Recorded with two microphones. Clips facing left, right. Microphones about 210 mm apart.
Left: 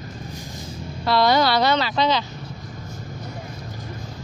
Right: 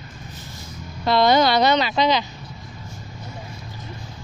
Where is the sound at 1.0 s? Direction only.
20° right (ahead or behind).